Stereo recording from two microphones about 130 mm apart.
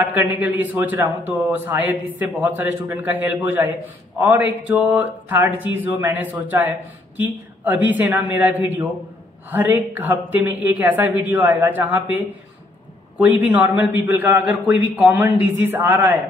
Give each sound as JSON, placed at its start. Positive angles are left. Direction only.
{"t": 0.1, "sound": "a man's voice", "side_deg": -15}
{"t": 13.2, "sound": "a man's voice", "side_deg": -15}